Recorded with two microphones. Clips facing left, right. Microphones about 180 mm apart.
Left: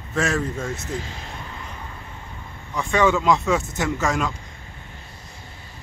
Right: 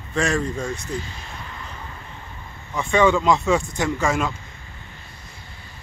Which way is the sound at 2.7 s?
Centre (ahead or behind).